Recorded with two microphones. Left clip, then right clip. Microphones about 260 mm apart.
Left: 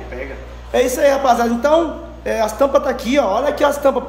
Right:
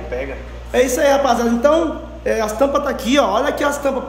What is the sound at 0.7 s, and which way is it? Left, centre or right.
A man's voice, centre.